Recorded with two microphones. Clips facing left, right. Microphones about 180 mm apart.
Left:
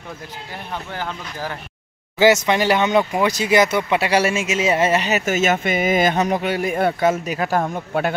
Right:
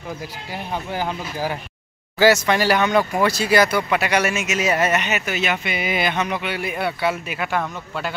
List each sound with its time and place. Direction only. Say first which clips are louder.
0.9 s speech: right 3 dB; 10° right (ahead or behind)
2.1 s speech: left 1 dB; 20° left (ahead or behind); by 8.1 s 50° left (ahead or behind)